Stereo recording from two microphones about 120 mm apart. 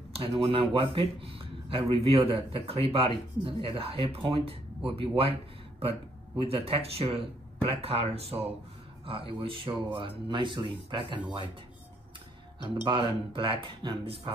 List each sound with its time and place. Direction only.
0.1 s speech: 60° right (ahead or behind); by 11.1 s 40° right (ahead or behind)
12.8 s speech: 45° right (ahead or behind)